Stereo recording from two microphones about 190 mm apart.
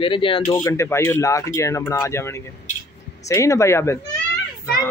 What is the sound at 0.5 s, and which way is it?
Speech, 15° left (ahead or behind).